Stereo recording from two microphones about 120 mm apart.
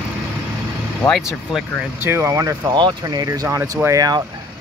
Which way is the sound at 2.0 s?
20° right (ahead or behind).